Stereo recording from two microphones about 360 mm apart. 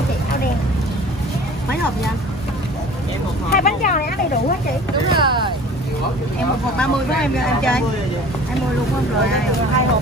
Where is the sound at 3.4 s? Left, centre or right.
Left.